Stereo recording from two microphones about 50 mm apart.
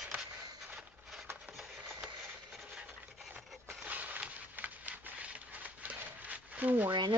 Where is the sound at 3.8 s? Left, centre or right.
Right.